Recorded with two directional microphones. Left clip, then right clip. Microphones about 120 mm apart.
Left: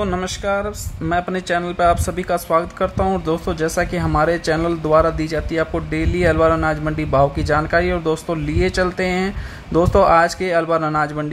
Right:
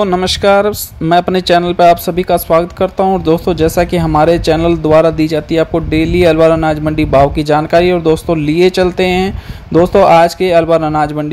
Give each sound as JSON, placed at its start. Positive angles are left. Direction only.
{"t": 0.4, "sound": "speech", "side_deg": -65}
{"t": 1.0, "sound": "speech", "side_deg": -50}